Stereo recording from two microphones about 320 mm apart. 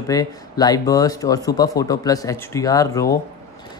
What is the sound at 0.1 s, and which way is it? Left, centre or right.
Speech, centre.